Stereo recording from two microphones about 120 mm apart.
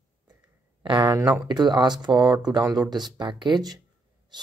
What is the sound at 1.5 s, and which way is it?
Speech, 35° right (ahead or behind).